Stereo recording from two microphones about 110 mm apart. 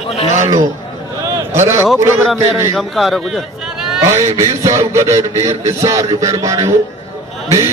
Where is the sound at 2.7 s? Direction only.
Centre (ahead or behind).